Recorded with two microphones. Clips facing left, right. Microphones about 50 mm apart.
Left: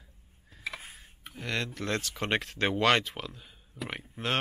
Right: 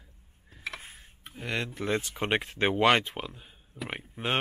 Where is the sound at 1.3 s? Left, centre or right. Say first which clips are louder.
Right 1 dB; centre.